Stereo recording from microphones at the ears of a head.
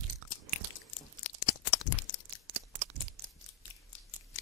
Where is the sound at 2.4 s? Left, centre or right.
Right.